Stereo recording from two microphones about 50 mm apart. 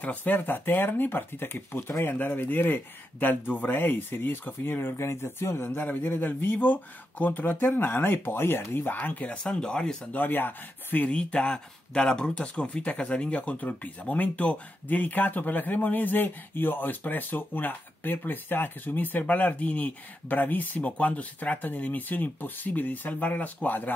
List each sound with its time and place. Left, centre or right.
0.0 s speech: left
5.9 s speech: left
8.9 s speech: left
9.4 s speech: centre
10.1 s speech: left
11.1 s speech: left